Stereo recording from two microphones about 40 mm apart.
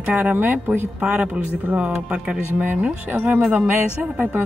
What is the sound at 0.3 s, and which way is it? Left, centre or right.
Speech, right.